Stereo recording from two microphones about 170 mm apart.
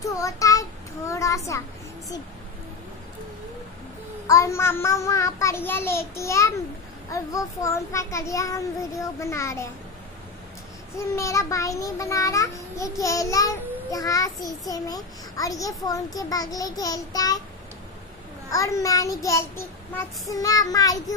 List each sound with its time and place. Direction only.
0.0 s child singing: 20° left (ahead or behind)
4.3 s a child's voice: 20° left (ahead or behind)
11.0 s a child's voice: 15° left (ahead or behind)
18.5 s a child's voice: 20° left (ahead or behind)